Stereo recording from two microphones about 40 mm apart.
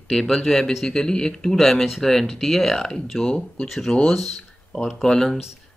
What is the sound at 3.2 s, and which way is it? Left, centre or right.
Speech, left.